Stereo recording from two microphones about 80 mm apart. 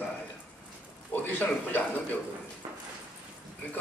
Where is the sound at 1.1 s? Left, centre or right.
Left.